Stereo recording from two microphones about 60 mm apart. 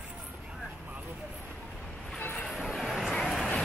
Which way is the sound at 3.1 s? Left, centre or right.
Centre.